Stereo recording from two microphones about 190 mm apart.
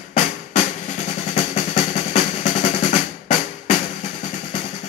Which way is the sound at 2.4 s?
40° left (ahead or behind).